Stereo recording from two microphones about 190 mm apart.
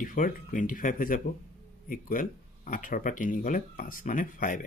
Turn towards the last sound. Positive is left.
turn(degrees=45)  # may be behind; listen again after turning